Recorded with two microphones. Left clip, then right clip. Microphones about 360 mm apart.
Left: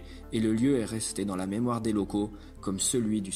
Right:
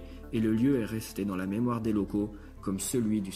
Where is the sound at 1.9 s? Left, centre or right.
Left.